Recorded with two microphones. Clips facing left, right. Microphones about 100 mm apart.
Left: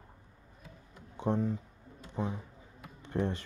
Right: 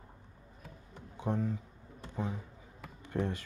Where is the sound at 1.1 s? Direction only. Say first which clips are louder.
Left 3 dB; 20° left (ahead or behind).